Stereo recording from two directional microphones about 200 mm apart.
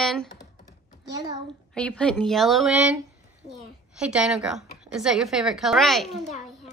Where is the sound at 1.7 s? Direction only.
5° left (ahead or behind).